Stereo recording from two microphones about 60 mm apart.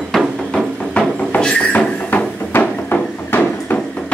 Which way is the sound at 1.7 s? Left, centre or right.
Left.